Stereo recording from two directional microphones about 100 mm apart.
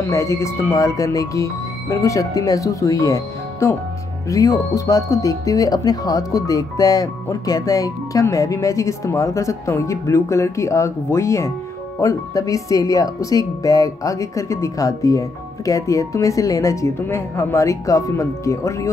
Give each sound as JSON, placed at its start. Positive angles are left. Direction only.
{"t": 0.1, "sound": "speech", "side_deg": 30}